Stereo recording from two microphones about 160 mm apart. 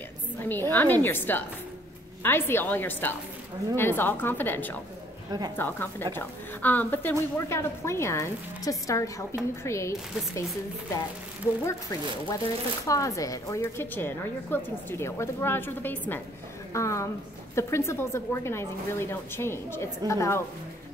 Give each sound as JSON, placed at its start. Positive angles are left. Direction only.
{"t": 0.4, "sound": "a woman's voice", "side_deg": 10}
{"t": 11.6, "sound": "a woman's voice", "side_deg": 20}